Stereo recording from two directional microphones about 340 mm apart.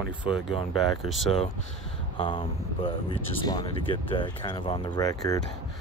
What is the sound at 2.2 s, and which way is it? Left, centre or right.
Speech, centre.